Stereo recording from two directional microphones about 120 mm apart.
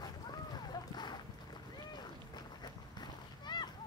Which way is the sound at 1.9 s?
35° left (ahead or behind).